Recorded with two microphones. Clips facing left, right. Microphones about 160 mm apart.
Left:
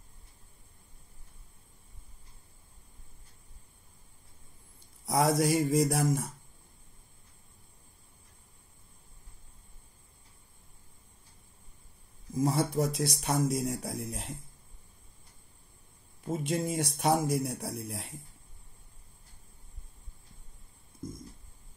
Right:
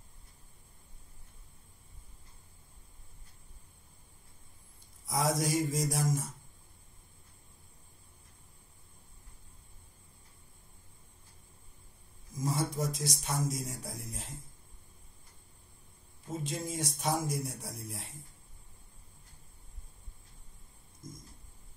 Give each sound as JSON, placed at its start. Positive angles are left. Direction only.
{"t": 5.0, "sound": "speech", "side_deg": 70}
{"t": 12.4, "sound": "speech", "side_deg": 70}
{"t": 16.4, "sound": "speech", "side_deg": 65}